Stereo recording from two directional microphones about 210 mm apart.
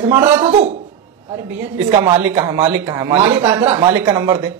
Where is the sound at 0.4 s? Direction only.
35° right (ahead or behind).